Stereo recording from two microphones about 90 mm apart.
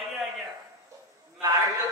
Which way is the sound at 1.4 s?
40° right (ahead or behind).